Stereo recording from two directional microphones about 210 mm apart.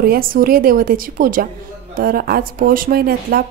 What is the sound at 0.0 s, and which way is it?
Speech, 45° right (ahead or behind).